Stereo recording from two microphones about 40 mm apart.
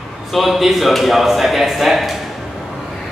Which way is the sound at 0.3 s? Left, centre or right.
Centre.